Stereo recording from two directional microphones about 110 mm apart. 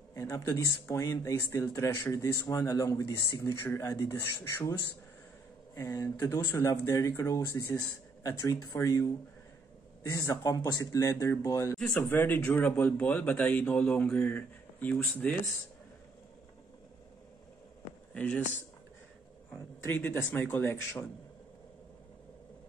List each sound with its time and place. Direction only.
0.1 s speech: 30° left (ahead or behind)
5.8 s speech: 25° left (ahead or behind)
10.1 s speech: 30° left (ahead or behind); by 15.3 s 15° left (ahead or behind)
18.1 s speech: 15° left (ahead or behind)
19.9 s speech: 20° left (ahead or behind)